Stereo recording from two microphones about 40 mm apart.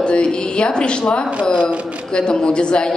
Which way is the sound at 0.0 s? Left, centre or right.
Left.